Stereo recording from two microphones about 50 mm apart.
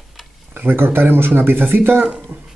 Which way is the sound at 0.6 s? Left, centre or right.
Right.